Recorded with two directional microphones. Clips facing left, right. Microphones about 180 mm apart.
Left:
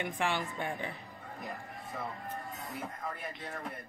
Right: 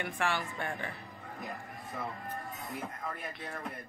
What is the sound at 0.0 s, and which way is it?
Speech, 15° left (ahead or behind).